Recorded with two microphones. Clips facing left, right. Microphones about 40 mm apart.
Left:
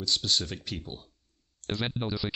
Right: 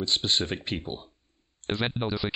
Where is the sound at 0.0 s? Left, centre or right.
Right.